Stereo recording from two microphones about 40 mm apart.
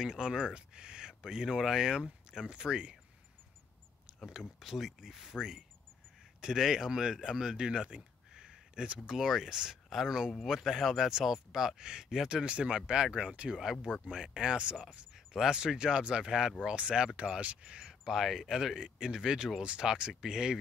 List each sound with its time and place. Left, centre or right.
0.0 s speech: centre
0.6 s speech: right
4.3 s speech: centre; by 9.0 s right
9.0 s speech: centre
12.4 s speech: right
17.7 s a sound: centre
18.2 s speech: centre